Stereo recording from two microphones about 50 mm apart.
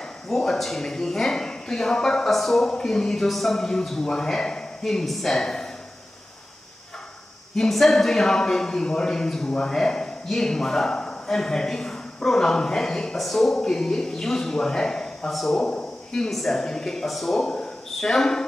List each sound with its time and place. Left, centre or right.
0.3 s a man's voice: centre
7.5 s a man's voice: centre
15.6 s a man's voice: left
16.1 s a man's voice: centre
17.6 s a sound: centre